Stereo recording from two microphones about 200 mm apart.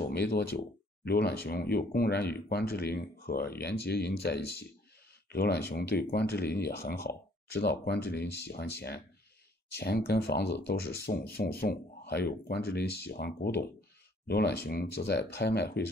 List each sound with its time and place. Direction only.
0.0 s speech: 55° left (ahead or behind)